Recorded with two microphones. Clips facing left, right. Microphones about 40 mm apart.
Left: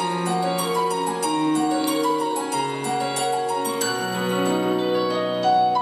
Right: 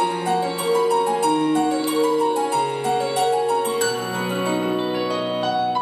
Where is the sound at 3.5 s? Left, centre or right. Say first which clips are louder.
Right 3 dB; right.